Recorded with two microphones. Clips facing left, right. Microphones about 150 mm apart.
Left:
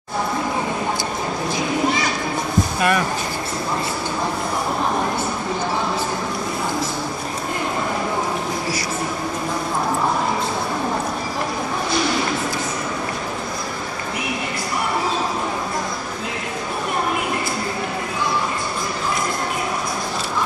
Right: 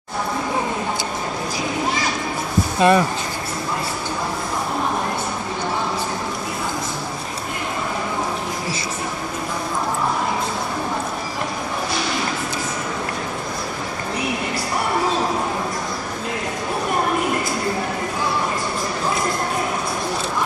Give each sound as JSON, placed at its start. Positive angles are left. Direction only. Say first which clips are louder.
{"t": 2.8, "sound": "speech", "louder": "right 6 dB", "side_deg": -25}